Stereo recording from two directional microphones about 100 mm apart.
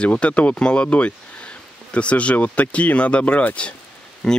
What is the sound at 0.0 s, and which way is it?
Speech, 10° left (ahead or behind).